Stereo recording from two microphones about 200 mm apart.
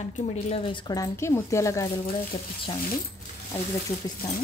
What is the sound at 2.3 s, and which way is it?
Speech, 25° left (ahead or behind).